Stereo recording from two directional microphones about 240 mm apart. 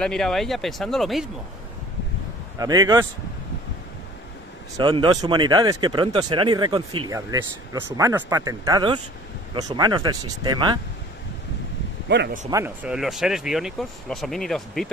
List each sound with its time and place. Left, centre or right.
0.0 s speech: centre
2.6 s speech: centre
4.7 s speech: centre
12.1 s a man's voice: right
12.4 s speech: centre